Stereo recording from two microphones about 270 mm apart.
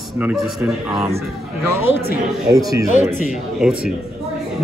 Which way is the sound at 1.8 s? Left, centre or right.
Left.